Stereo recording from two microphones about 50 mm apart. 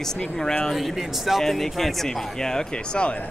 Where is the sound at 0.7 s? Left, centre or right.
Centre.